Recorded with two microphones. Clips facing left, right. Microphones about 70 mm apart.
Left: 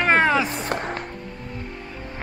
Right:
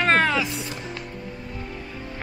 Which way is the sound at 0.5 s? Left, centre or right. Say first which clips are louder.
Left 6 dB; left.